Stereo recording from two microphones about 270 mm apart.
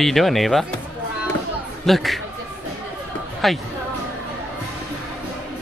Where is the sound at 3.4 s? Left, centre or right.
Centre.